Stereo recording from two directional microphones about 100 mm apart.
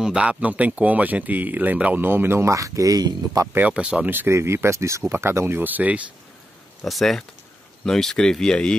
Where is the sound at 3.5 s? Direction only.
15° right (ahead or behind).